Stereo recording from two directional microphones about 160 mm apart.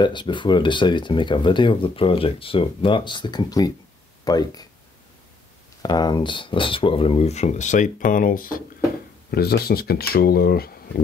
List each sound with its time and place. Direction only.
0.0 s speech: 30° left (ahead or behind)
5.8 s speech: 25° left (ahead or behind); by 8.6 s 60° left (ahead or behind)
9.3 s speech: 80° left